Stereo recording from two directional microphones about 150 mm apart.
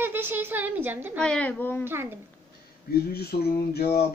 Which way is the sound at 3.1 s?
90° left.